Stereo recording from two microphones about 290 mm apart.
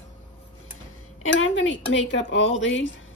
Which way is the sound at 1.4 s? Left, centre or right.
Left.